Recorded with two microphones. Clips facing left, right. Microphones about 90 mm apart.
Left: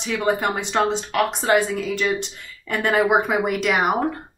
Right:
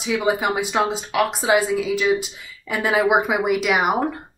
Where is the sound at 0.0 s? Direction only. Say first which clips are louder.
Right 1 dB; 5° right (ahead or behind).